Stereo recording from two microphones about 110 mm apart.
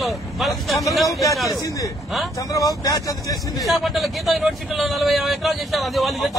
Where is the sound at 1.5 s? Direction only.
30° left (ahead or behind).